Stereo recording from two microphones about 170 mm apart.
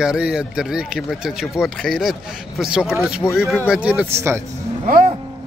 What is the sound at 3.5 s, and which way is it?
Speech, 5° right (ahead or behind).